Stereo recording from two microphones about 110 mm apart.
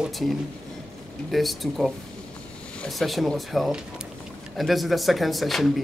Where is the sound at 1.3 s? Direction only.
Centre (ahead or behind).